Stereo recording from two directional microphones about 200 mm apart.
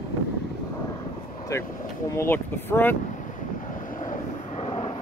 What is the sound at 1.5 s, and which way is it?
Speech, 15° left (ahead or behind).